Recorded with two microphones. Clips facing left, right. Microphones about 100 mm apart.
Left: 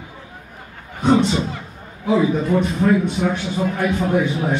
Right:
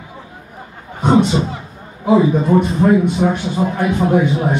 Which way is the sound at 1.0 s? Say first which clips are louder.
Right 3 dB; 20° right (ahead or behind).